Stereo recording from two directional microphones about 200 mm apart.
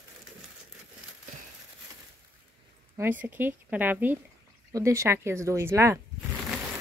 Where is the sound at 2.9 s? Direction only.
10° right (ahead or behind).